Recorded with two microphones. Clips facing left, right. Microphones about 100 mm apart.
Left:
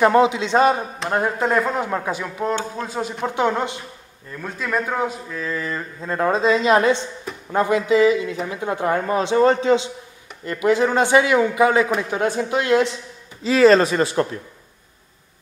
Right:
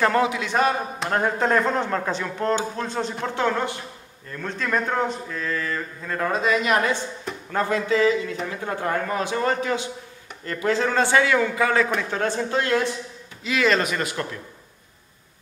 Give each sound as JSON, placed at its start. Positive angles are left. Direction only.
{"t": 0.0, "sound": "speech", "side_deg": 20}
{"t": 0.9, "sound": "a man's voice", "side_deg": 0}
{"t": 4.3, "sound": "a man's voice", "side_deg": 10}
{"t": 13.4, "sound": "speech", "side_deg": 35}